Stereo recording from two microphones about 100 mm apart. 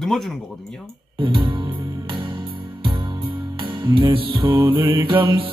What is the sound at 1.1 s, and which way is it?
Music, 60° right (ahead or behind).